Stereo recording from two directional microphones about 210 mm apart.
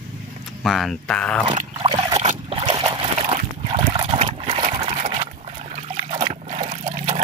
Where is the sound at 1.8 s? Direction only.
20° right (ahead or behind).